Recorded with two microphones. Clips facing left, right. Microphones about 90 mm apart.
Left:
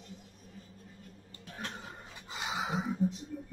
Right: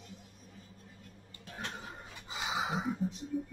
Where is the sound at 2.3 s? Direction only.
Centre (ahead or behind).